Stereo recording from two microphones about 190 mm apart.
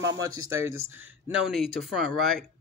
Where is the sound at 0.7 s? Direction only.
90° right.